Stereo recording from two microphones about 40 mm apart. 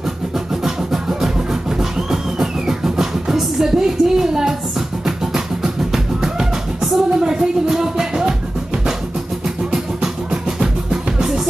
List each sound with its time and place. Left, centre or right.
0.7 s music: centre
10.3 s music: right